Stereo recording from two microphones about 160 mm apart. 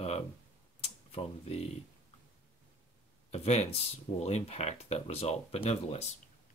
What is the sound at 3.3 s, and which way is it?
Speech, 40° left (ahead or behind).